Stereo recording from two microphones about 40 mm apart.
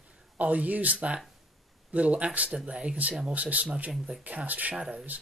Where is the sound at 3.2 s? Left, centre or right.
Right.